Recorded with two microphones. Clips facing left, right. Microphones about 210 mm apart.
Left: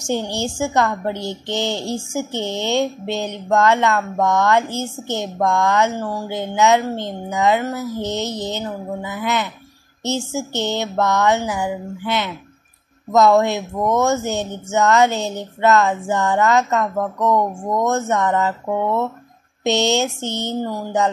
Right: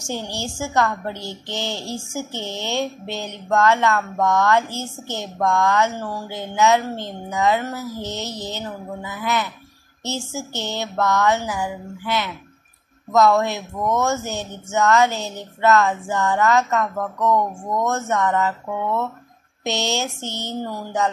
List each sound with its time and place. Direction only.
0.0 s a woman's voice: 20° left (ahead or behind)